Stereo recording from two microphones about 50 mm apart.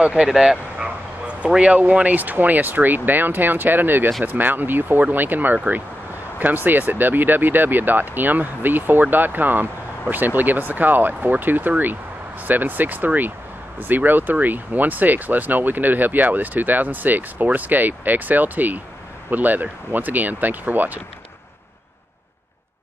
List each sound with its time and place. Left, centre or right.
0.0 s speech: centre
0.7 s bow-wow: right
1.5 s speech: right
1.8 s speech: right